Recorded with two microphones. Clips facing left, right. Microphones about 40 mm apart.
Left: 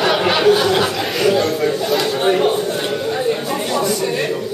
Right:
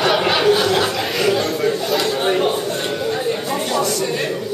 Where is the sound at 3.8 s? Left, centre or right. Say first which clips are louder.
Left 2 dB; centre.